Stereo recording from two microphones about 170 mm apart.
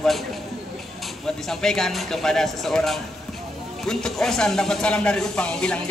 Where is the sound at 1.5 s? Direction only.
5° left (ahead or behind).